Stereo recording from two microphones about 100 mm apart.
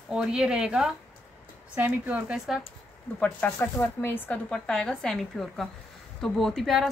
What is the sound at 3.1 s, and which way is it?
A woman's voice, 15° left (ahead or behind).